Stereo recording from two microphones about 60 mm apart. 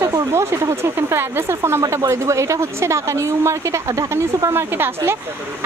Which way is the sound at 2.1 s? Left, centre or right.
Right.